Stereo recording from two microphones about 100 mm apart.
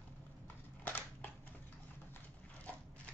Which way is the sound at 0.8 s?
20° left (ahead or behind).